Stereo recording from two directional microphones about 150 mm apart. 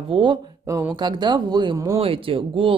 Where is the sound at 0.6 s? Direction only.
20° right (ahead or behind).